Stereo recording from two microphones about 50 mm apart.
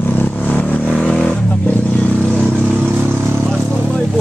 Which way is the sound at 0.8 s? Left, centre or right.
Centre.